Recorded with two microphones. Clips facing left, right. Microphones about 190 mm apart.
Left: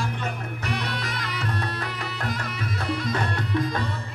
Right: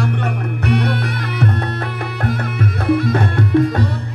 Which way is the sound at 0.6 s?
60° right (ahead or behind).